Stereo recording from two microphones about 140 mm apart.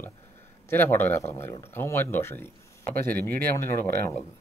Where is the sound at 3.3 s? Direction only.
90° right.